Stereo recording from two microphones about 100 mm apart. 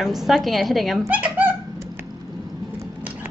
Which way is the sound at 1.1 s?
15° right (ahead or behind).